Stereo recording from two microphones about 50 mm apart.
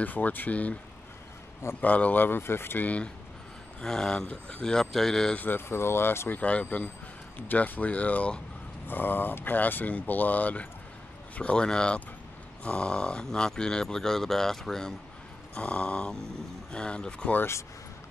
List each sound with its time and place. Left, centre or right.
0.0 s speech: left
1.8 s speech: left
2.2 s speech: left
2.8 s a sound: left
3.8 s speech: centre
5.7 s speech: left
6.3 s a sound: left
6.6 s speech: left
8.8 s speech: left
11.5 s speech: centre
15.5 s a sound: left